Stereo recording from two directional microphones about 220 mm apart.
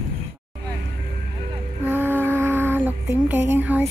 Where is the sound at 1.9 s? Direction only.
10° right (ahead or behind).